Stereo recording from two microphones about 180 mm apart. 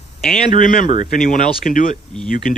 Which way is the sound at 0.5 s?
50° left (ahead or behind).